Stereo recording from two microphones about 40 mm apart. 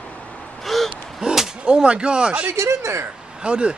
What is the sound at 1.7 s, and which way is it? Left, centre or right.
Speech, right.